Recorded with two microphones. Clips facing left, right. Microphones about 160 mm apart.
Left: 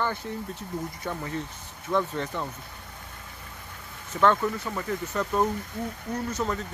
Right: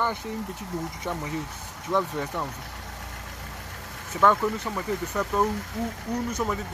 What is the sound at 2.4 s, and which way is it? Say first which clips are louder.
Vehicle: right 2 dB; 80° right.